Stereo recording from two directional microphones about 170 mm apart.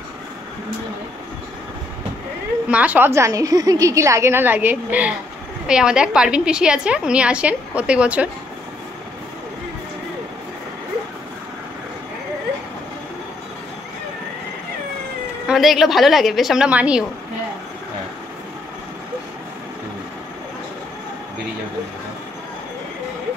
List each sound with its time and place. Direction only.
2.7 s a woman's voice: 10° right (ahead or behind)
15.4 s a woman's voice: centre (ahead or behind)